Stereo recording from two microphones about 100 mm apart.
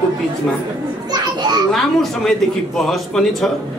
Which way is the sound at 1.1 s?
45° right (ahead or behind).